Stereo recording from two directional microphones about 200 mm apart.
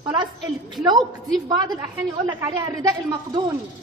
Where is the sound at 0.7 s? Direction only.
20° right (ahead or behind).